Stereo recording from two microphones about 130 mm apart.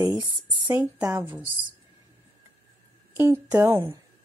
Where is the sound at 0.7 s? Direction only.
10° right (ahead or behind).